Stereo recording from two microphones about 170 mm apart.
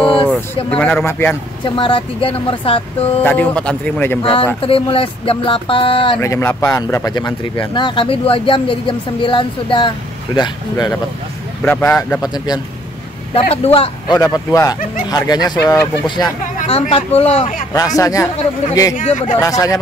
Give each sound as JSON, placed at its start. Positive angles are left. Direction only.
{"t": 0.7, "sound": "speech", "side_deg": 10}
{"t": 1.6, "sound": "speech", "side_deg": 30}
{"t": 3.2, "sound": "speech", "side_deg": 10}
{"t": 4.2, "sound": "speech", "side_deg": 30}
{"t": 6.2, "sound": "speech", "side_deg": 15}
{"t": 11.6, "sound": "speech", "side_deg": 10}
{"t": 13.3, "sound": "speech", "side_deg": 35}
{"t": 16.9, "sound": "speech", "side_deg": 35}
{"t": 17.7, "sound": "speech", "side_deg": 20}
{"t": 18.9, "sound": "speech", "side_deg": 50}
{"t": 19.3, "sound": "speech", "side_deg": 20}